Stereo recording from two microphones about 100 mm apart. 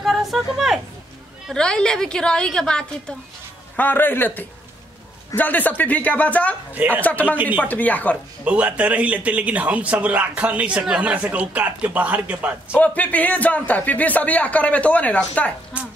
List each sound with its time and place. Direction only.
0.0 s a sound: centre (ahead or behind)
1.5 s a man's voice: 10° left (ahead or behind)
6.7 s speech: 20° right (ahead or behind)
7.0 s speech: 15° left (ahead or behind)
7.3 s speech: 15° right (ahead or behind)
7.6 s speech: 15° left (ahead or behind)
8.5 s speech: 15° right (ahead or behind)
12.7 s speech: 15° left (ahead or behind)
15.7 s speech: 15° right (ahead or behind)